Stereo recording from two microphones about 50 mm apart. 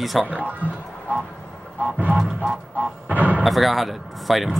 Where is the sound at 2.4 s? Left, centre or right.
Right.